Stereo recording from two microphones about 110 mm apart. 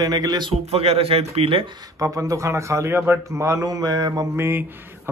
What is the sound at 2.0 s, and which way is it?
A man's voice, 30° right (ahead or behind).